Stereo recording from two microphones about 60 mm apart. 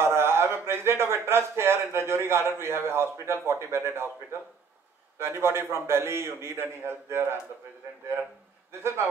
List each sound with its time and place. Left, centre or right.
0.0 s a sound: right
2.6 s a man's voice: right
8.8 s a man's voice: right